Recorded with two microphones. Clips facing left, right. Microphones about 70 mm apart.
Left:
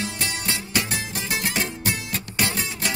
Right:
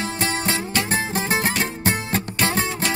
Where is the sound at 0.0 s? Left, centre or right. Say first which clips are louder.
Right 5 dB; right.